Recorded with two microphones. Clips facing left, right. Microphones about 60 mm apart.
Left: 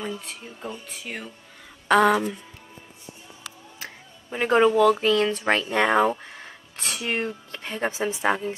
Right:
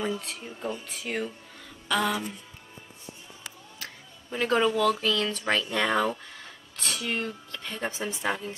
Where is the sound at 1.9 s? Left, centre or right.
Left.